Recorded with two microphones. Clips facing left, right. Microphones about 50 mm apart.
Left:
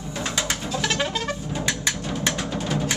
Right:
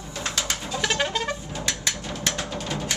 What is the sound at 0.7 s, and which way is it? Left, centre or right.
Vehicle, centre.